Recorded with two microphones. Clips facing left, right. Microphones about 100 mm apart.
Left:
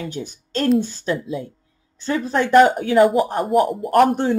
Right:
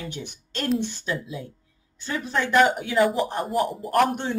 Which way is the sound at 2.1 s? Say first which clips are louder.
Left 7 dB; 40° left (ahead or behind).